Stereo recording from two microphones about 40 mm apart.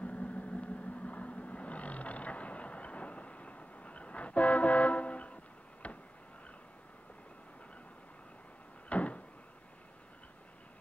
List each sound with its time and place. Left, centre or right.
0.0 s vehicle: left
8.8 s door: left